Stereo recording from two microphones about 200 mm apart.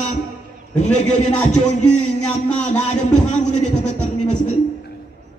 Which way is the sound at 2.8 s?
35° left (ahead or behind).